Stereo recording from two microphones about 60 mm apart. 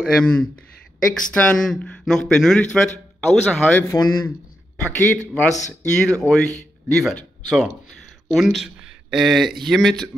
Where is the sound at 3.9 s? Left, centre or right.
Left.